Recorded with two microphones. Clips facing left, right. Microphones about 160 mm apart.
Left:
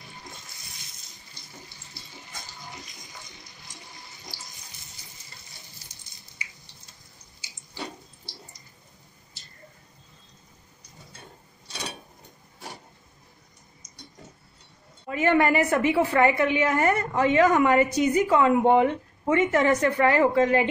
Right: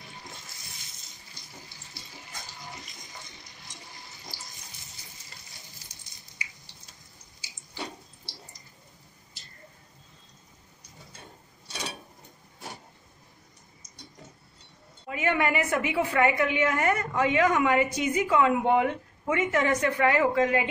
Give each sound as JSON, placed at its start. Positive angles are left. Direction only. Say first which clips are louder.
{"t": 15.0, "sound": "a woman's voice", "louder": "left 5 dB", "side_deg": 40}